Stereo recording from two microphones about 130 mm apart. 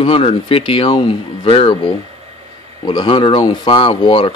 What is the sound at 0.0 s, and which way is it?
Speech, 45° left (ahead or behind).